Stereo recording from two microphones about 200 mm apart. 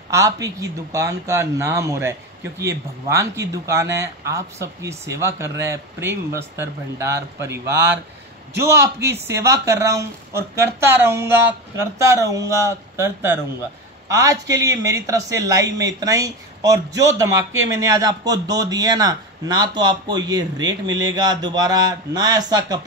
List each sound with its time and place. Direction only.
0.1 s speech: 15° right (ahead or behind)